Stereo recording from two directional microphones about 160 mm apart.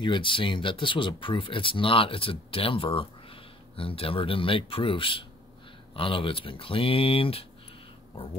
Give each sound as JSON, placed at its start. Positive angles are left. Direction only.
{"t": 0.0, "sound": "speech", "side_deg": 30}